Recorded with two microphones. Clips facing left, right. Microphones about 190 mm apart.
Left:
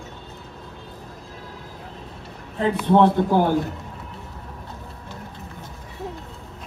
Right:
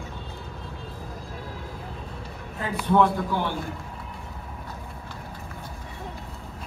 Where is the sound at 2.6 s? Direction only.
25° left (ahead or behind).